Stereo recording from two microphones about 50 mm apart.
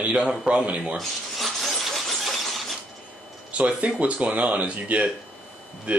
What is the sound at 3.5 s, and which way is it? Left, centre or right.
Speech, right.